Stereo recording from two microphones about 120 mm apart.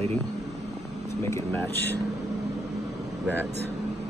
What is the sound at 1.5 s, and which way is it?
Speech, 15° left (ahead or behind).